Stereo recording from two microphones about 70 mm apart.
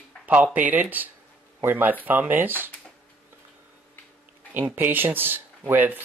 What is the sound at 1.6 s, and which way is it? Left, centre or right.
Speech, right.